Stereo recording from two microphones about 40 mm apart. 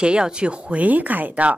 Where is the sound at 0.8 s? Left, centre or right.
Right.